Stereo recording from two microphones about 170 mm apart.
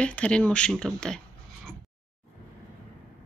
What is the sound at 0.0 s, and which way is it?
Speech, 5° left (ahead or behind).